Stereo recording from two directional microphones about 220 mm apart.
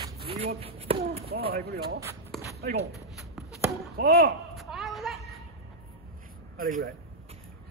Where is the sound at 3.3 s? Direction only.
Centre (ahead or behind).